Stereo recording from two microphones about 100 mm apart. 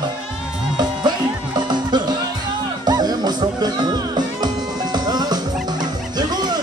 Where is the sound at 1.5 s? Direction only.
45° right (ahead or behind).